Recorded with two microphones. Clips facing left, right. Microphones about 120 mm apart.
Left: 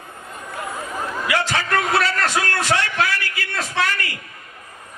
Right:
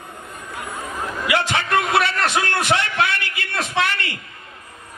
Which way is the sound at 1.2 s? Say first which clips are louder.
Right 2 dB; 20° right (ahead or behind).